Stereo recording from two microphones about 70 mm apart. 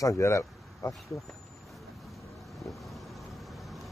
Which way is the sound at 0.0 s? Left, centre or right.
Left.